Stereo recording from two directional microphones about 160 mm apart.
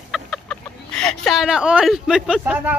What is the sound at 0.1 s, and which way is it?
Speech, 5° left (ahead or behind).